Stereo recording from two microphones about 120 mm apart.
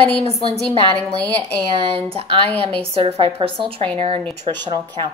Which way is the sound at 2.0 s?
50° right (ahead or behind).